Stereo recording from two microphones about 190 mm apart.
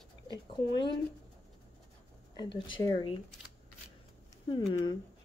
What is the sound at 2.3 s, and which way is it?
Speech, 25° left (ahead or behind).